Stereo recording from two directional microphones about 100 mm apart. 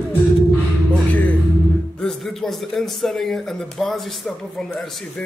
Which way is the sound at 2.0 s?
5° left (ahead or behind).